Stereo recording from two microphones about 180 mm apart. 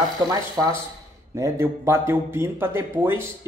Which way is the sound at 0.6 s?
15° right (ahead or behind).